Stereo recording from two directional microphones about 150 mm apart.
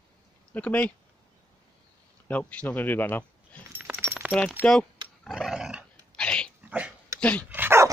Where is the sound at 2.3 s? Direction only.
10° left (ahead or behind).